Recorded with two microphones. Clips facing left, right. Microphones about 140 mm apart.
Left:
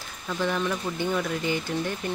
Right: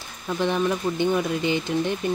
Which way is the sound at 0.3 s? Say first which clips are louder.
Right 4 dB; 20° right (ahead or behind).